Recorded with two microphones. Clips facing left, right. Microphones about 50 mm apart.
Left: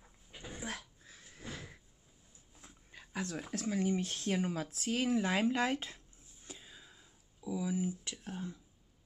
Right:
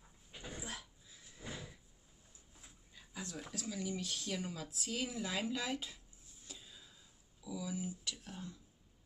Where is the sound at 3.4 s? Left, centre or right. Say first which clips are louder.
Left 7 dB; left.